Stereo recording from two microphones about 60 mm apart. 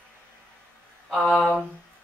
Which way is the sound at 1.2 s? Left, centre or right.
Centre.